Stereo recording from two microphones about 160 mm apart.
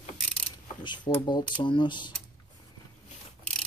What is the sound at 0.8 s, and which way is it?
Speech, 30° left (ahead or behind).